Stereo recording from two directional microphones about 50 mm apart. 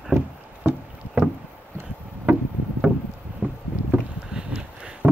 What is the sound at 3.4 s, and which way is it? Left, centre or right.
Boat, right.